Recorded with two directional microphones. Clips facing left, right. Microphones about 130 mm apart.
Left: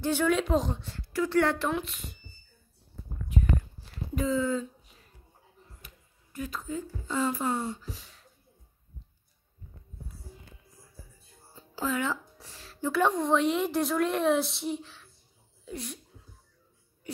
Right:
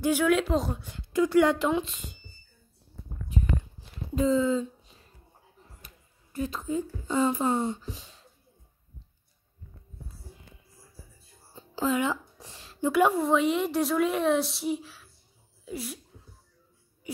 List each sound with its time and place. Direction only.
0.0 s a woman's voice: 10° right (ahead or behind)
4.1 s speech: 25° right (ahead or behind)
6.3 s speech: 25° right (ahead or behind)
11.5 s speech: 20° right (ahead or behind); by 16.0 s 5° right (ahead or behind)